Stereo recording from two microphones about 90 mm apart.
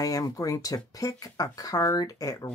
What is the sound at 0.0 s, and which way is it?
Speech, 40° left (ahead or behind).